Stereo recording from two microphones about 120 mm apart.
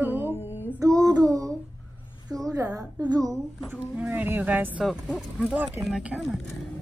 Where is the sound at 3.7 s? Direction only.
15° right (ahead or behind).